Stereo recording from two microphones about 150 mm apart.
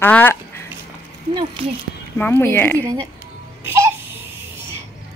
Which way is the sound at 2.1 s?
10° left (ahead or behind).